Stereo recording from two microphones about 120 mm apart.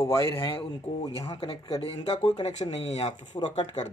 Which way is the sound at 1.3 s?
55° left (ahead or behind).